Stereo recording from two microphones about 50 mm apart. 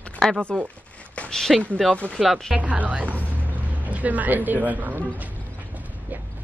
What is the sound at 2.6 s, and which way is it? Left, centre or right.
Speech, right.